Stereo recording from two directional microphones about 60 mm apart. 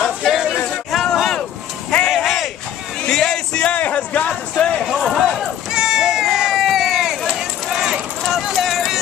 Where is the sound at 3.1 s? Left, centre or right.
Centre; by 4.4 s left.